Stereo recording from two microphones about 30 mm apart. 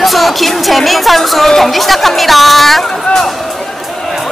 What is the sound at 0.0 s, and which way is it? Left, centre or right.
Speech, centre.